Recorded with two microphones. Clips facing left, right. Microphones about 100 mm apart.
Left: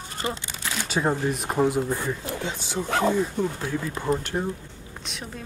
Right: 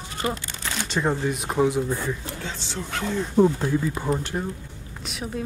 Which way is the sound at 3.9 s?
10° right (ahead or behind).